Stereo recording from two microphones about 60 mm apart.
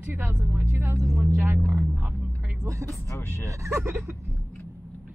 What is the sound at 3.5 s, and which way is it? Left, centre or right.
Speech, right.